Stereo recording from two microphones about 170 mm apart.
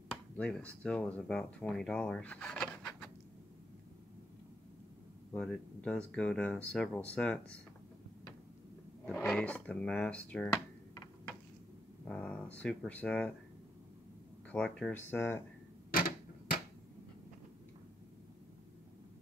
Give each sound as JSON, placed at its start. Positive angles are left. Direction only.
{"t": 0.4, "sound": "speech", "side_deg": 5}
{"t": 5.3, "sound": "speech", "side_deg": 5}
{"t": 9.0, "sound": "speech", "side_deg": 10}
{"t": 12.0, "sound": "speech", "side_deg": 5}
{"t": 14.5, "sound": "speech", "side_deg": 5}
{"t": 15.9, "sound": "typewriter", "side_deg": 60}